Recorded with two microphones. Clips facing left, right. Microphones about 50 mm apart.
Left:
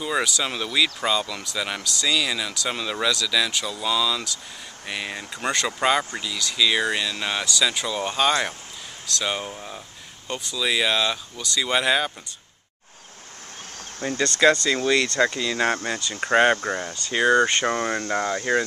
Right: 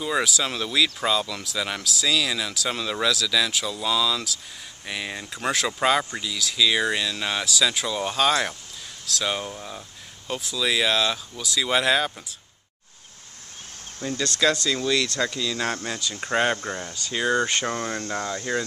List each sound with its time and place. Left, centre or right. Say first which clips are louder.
0.0 s speech: even; centre
13.9 s speech: left 3 dB; left